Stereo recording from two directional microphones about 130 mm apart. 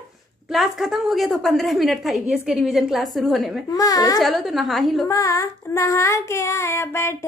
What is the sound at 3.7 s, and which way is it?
Child singing, 25° left (ahead or behind).